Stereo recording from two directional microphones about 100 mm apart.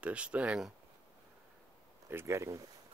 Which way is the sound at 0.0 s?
10° right (ahead or behind).